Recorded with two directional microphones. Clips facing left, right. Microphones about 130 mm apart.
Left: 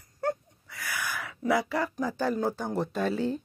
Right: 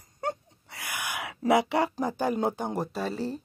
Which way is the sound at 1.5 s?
75° right (ahead or behind).